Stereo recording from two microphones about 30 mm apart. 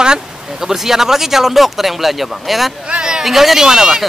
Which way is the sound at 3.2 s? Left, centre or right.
Centre.